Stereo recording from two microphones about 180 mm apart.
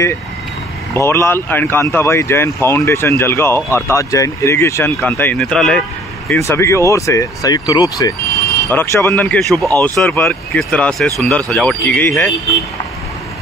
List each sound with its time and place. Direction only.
0.9 s speech: 15° left (ahead or behind)
6.4 s speech: 15° left (ahead or behind)